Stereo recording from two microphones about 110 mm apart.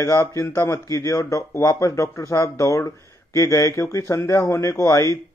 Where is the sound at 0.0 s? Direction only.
25° left (ahead or behind).